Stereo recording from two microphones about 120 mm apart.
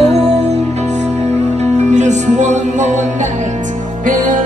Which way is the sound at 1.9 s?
80° right.